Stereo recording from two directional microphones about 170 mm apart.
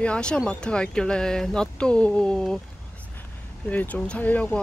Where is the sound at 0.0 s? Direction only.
5° left (ahead or behind).